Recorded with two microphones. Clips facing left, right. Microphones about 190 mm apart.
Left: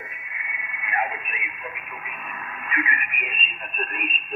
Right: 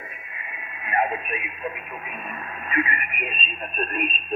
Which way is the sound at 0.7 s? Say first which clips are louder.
Right 4 dB; 35° right (ahead or behind).